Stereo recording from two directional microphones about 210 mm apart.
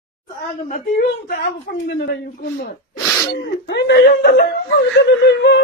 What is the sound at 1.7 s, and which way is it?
Speech, 45° left (ahead or behind).